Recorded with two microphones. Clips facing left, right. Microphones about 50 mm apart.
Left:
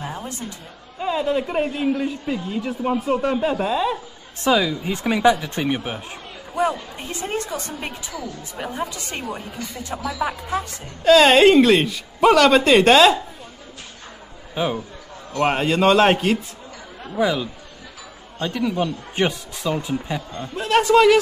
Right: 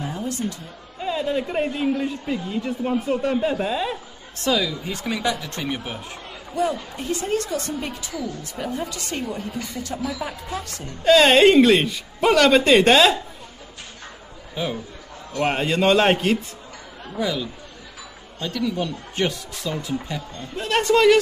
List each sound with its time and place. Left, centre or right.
0.0 s a sound: left
1.0 s speech: centre
4.5 s speech: left
11.1 s speech: centre
14.5 s a man's voice: left
15.4 s speech: centre
17.2 s speech: left
20.5 s speech: centre